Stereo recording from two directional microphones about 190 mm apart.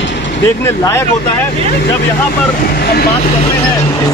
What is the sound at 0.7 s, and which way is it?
Speech, 15° left (ahead or behind).